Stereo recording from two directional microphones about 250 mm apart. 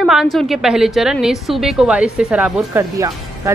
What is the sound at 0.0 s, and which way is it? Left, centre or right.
A woman's voice, centre.